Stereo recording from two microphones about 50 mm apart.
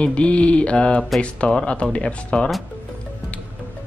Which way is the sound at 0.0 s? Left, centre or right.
Left.